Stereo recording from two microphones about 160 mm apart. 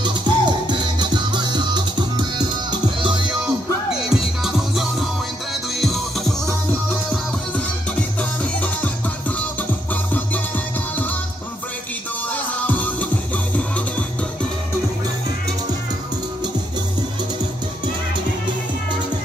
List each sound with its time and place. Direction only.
0.0 s music: 30° right (ahead or behind)
4.1 s music: 5° right (ahead or behind)
8.2 s music: 10° left (ahead or behind)
12.3 s music: 10° left (ahead or behind)